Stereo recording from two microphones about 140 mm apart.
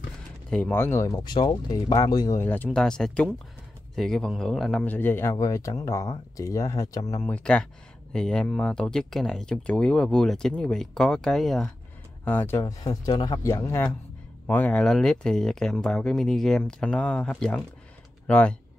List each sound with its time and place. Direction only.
0.5 s speech: 10° left (ahead or behind); by 2.4 s 25° left (ahead or behind)
2.4 s speech: 10° left (ahead or behind)
7.2 s speech: 10° left (ahead or behind)
12.3 s speech: 15° left (ahead or behind)
12.8 s speech: 30° left (ahead or behind); by 18.6 s 10° left (ahead or behind)